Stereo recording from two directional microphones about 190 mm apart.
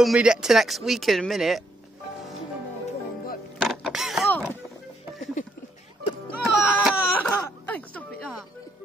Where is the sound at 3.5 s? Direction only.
Centre (ahead or behind).